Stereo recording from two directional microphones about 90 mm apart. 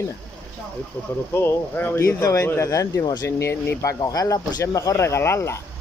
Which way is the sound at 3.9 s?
40° left (ahead or behind).